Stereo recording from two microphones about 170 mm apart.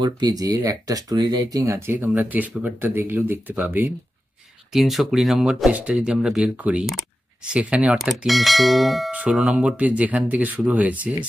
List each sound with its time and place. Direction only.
0.0 s speech: 25° right (ahead or behind)